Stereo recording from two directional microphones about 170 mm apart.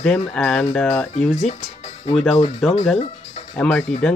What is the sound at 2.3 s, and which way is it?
Speech, 35° left (ahead or behind).